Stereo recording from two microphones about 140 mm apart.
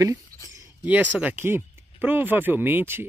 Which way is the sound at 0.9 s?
10° right (ahead or behind).